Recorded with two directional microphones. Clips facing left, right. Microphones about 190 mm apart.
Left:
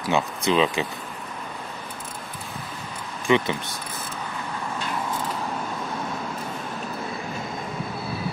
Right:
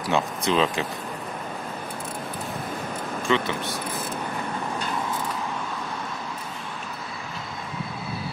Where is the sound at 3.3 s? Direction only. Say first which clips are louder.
Left 3 dB; 15° left (ahead or behind).